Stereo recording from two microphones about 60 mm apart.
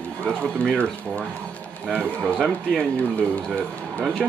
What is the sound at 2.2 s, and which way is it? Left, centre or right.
Speech, centre.